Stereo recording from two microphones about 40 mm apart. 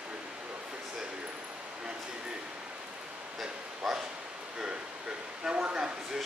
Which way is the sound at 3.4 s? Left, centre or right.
Centre.